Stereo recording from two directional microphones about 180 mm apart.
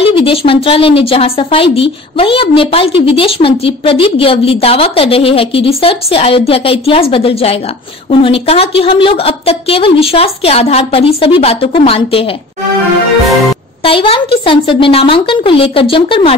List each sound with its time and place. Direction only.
0.0 s a woman's voice: 30° left (ahead or behind)
13.8 s a woman's voice: 30° left (ahead or behind)